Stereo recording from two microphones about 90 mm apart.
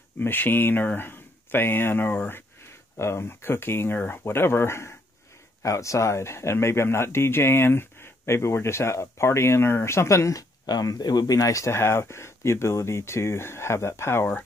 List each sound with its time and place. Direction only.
0.2 s speech: 20° left (ahead or behind)